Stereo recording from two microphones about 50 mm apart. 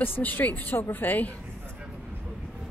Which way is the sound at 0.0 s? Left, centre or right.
Left.